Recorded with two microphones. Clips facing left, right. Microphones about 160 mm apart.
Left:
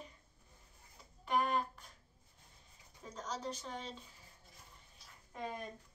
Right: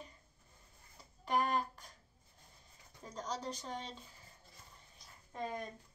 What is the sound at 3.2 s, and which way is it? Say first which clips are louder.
Speech: right 1 dB; 35° right (ahead or behind).